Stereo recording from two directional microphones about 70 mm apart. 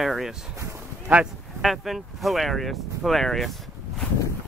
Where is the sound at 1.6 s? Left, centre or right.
Centre.